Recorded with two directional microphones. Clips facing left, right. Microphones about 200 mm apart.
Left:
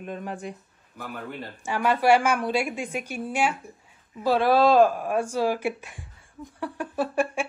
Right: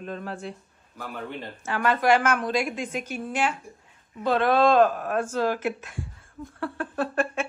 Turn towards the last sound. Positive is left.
turn(degrees=10)  # may be behind; listen again after turning